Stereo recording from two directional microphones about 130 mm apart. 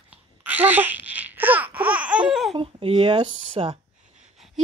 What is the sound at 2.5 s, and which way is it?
A woman's voice, 45° right (ahead or behind).